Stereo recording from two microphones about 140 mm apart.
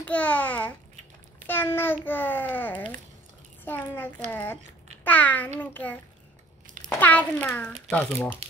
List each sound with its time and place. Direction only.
0.0 s a child's voice: 10° left (ahead or behind)